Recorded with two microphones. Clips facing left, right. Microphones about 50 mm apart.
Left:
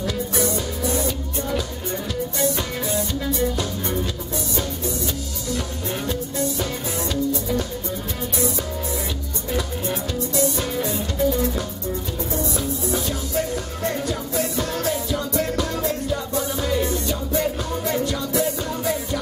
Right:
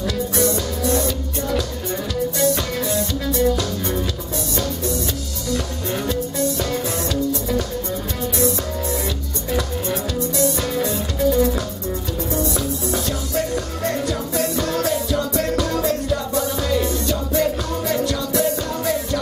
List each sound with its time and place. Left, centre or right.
0.0 s music: centre
5.5 s music: centre
9.5 s music: centre